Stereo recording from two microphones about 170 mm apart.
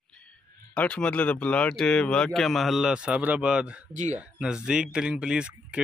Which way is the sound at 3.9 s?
45° right (ahead or behind).